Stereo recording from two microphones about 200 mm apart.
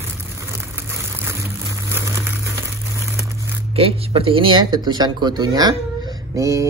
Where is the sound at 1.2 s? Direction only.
15° right (ahead or behind).